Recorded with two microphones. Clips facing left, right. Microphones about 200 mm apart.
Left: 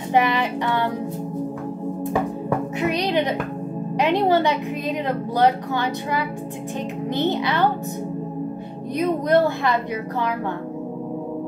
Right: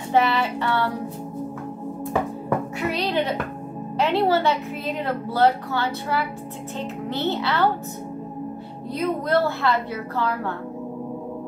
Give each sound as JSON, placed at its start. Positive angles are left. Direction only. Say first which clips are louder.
{"t": 0.1, "sound": "a woman's voice", "louder": "left 1 dB", "side_deg": 15}
{"t": 2.8, "sound": "music", "louder": "left 5 dB", "side_deg": 20}
{"t": 4.0, "sound": "a woman's voice", "louder": "left 1 dB", "side_deg": 15}
{"t": 8.9, "sound": "a woman's voice", "louder": "left 3 dB", "side_deg": 15}